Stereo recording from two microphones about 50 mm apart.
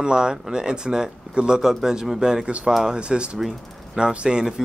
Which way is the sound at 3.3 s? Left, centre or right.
Centre.